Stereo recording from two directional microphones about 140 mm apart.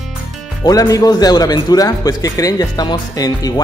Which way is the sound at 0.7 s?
25° left (ahead or behind).